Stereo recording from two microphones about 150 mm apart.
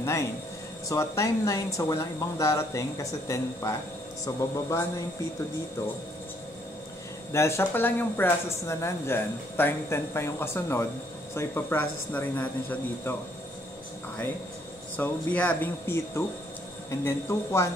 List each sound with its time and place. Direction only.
0.0 s speech: 20° left (ahead or behind)
7.3 s speech: 15° left (ahead or behind)
15.0 s speech: 10° left (ahead or behind)